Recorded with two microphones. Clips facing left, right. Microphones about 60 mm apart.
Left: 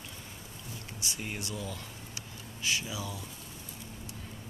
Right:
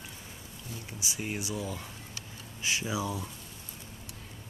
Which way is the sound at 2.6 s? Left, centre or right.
Right.